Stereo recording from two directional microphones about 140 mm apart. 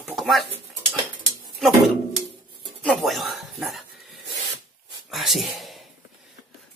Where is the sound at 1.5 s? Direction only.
Centre (ahead or behind).